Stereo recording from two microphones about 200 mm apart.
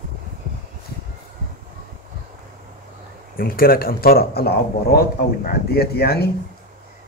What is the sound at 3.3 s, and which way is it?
Speech, 45° left (ahead or behind).